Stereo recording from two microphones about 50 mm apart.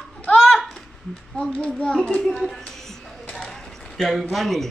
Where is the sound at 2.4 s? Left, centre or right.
Centre.